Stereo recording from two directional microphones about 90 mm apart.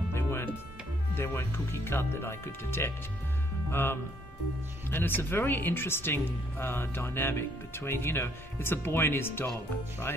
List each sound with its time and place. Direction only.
0.1 s music: 30° left (ahead or behind)
1.1 s speech: 25° left (ahead or behind)